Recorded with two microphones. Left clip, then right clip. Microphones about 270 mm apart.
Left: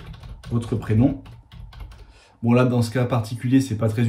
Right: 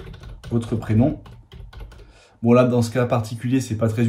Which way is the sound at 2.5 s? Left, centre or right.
Centre.